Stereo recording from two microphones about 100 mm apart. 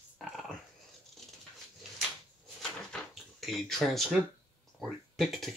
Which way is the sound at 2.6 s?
Centre (ahead or behind).